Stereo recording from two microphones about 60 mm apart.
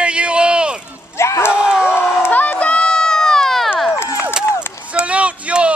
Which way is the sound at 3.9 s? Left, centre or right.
Left.